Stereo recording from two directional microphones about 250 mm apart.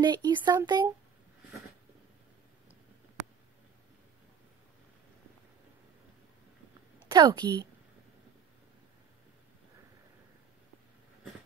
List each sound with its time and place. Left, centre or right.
0.0 s speech: centre
7.1 s a woman's voice: centre